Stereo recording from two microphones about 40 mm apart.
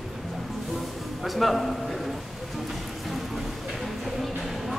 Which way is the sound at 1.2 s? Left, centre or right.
Centre.